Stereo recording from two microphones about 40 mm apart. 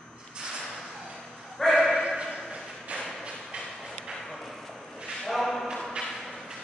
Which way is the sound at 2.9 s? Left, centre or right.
Right.